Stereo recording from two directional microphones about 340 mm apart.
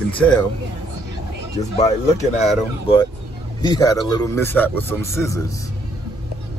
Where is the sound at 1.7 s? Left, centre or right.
Centre.